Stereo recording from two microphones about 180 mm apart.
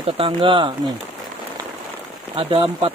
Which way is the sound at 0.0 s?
30° right (ahead or behind).